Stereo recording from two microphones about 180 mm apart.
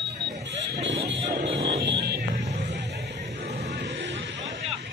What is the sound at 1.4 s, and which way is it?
Music, 70° right (ahead or behind).